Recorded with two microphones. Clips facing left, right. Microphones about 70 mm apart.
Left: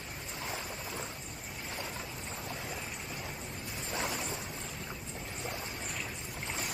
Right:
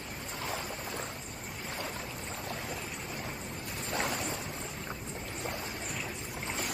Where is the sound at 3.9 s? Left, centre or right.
Right.